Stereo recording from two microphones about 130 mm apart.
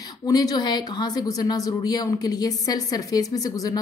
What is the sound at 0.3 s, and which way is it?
A woman's voice, 30° left (ahead or behind).